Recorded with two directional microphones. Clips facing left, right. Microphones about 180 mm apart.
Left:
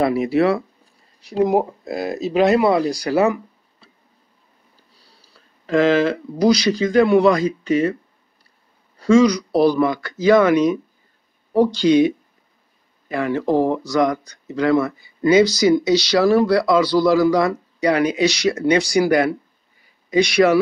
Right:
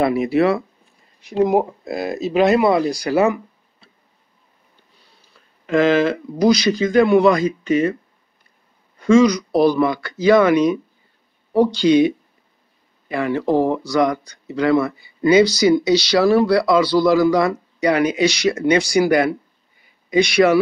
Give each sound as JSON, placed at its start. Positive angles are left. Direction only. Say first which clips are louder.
{"t": 0.0, "sound": "speech", "louder": "right 1 dB", "side_deg": 35}
{"t": 4.7, "sound": "speech", "louder": "even", "side_deg": 35}
{"t": 8.9, "sound": "speech", "louder": "right 1 dB", "side_deg": 35}
{"t": 13.1, "sound": "speech", "louder": "right 1 dB", "side_deg": 45}
{"t": 19.8, "sound": "a sound", "louder": "right 1 dB", "side_deg": 40}